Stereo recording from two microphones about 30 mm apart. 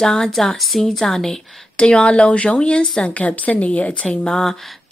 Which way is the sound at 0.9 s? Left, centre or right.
Centre.